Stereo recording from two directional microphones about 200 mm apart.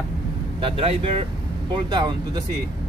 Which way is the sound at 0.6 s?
25° right (ahead or behind).